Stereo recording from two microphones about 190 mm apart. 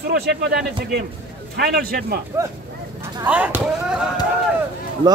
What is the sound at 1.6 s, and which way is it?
Speech, 55° right (ahead or behind).